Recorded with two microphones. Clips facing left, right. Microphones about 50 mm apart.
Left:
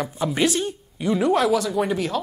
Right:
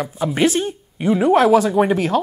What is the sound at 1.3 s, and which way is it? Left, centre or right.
Speech, right.